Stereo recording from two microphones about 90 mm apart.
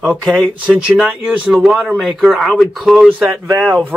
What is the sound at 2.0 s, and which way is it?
Speech, centre (ahead or behind).